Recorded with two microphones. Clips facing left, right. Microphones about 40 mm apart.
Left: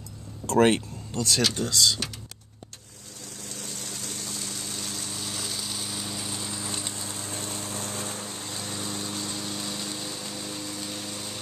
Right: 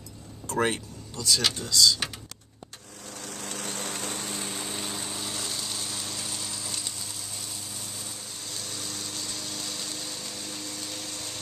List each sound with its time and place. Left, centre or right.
0.6 s speech: left
3.2 s lawn mower: right; by 8.3 s left
8.4 s lawn mower: left; by 11.3 s centre